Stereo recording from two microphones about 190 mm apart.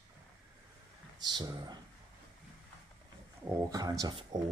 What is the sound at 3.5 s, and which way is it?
Speech, 20° right (ahead or behind).